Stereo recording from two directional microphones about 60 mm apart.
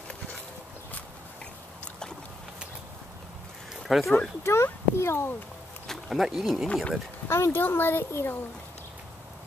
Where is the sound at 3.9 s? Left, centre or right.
Centre.